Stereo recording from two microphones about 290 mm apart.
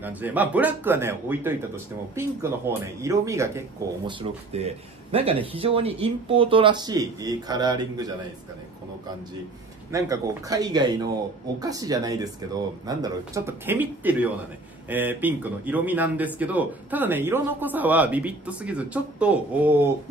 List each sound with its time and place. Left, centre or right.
0.0 s speech: centre
4.2 s speech: right
9.8 s speech: centre